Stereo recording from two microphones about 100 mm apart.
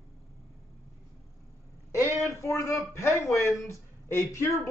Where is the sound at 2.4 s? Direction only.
30° left (ahead or behind).